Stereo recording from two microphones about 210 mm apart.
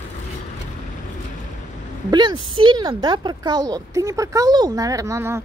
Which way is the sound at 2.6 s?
20° right (ahead or behind).